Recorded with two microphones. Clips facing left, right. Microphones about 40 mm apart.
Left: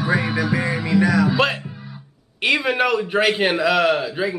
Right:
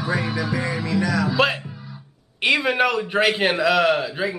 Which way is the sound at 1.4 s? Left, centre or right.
Centre.